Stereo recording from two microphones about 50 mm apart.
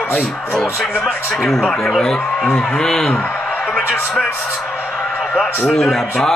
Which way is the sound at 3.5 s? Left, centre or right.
Left.